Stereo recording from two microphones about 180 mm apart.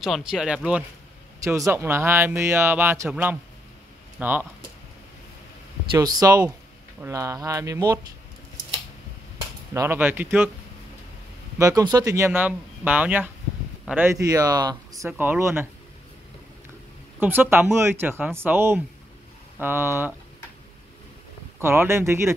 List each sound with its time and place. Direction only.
0.0 s speech: 5° right (ahead or behind)
5.9 s speech: 20° right (ahead or behind)
9.8 s speech: 10° right (ahead or behind)
11.5 s speech: 20° right (ahead or behind)
17.2 s speech: 10° right (ahead or behind)
21.5 s speech: 15° right (ahead or behind)